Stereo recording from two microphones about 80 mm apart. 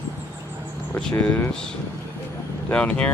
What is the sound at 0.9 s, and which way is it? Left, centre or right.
Speech, left.